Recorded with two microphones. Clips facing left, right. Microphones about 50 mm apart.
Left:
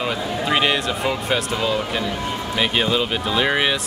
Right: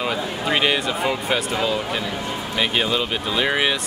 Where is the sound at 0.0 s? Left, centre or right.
Centre.